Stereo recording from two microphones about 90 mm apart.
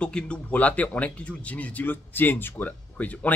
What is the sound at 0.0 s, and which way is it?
Speech, 10° left (ahead or behind).